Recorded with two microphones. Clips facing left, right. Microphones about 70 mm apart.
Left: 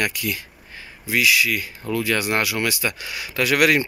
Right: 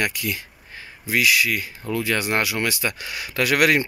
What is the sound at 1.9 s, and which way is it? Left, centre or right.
Speech, right.